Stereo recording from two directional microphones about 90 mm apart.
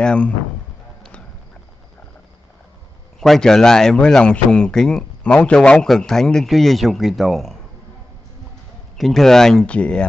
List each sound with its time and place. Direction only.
0.0 s speech: 10° left (ahead or behind)
3.2 s speech: 5° left (ahead or behind)
8.9 s speech: centre (ahead or behind)